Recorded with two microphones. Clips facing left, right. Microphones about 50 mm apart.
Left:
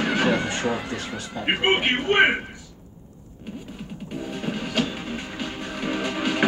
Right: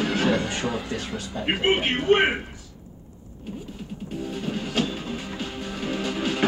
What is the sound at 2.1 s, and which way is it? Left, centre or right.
Speech, left.